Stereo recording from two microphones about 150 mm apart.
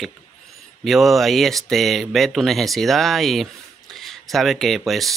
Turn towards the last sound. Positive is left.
turn(degrees=0)  # may be behind; listen again after turning